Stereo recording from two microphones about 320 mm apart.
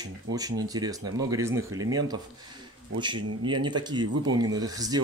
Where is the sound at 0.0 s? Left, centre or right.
Centre.